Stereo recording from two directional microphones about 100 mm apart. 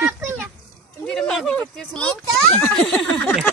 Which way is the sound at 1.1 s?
5° left (ahead or behind).